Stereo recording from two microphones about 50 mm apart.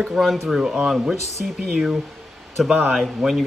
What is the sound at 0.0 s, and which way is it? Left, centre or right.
Speech, centre.